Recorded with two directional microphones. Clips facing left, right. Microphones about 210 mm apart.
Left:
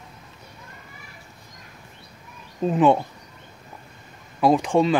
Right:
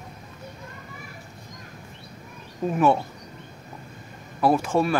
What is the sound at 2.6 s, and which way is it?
Speech, 20° left (ahead or behind).